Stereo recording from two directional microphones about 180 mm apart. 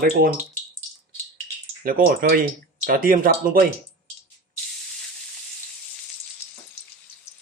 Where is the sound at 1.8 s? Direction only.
50° right (ahead or behind).